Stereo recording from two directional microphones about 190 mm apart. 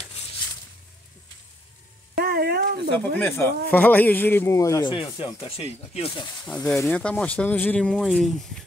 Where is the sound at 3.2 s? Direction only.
15° left (ahead or behind); by 6.2 s 30° left (ahead or behind).